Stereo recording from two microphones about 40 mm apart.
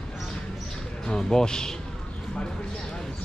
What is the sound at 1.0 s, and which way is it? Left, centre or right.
Speech, centre.